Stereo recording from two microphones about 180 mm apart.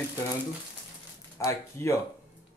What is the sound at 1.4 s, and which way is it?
Speech, 15° left (ahead or behind).